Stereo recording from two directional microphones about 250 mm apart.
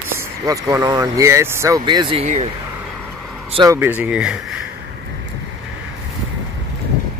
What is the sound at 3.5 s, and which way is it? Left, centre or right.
Speech, centre.